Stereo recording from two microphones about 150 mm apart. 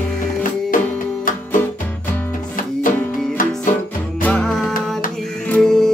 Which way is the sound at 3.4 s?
65° left (ahead or behind).